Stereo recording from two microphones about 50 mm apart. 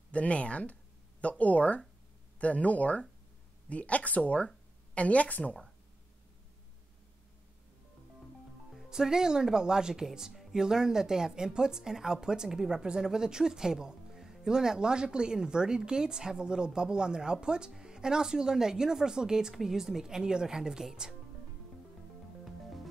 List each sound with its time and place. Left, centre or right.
0.1 s speech: left
8.7 s speech: centre